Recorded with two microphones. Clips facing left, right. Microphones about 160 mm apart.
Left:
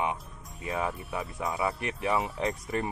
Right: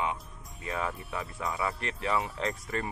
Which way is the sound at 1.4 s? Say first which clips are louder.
Left 2 dB; 25° left (ahead or behind).